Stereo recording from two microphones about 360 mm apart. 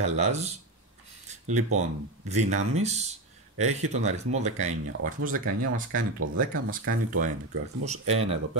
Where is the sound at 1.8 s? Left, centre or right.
Centre.